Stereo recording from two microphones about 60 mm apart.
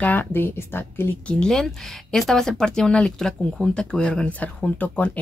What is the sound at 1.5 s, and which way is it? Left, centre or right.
Speech, centre.